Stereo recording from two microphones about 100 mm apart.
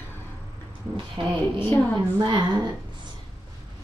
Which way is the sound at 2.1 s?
45° right (ahead or behind).